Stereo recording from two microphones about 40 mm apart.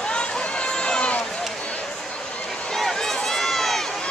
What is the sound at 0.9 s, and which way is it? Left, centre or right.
Run, left.